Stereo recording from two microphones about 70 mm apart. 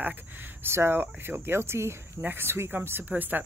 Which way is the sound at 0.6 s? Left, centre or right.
Right.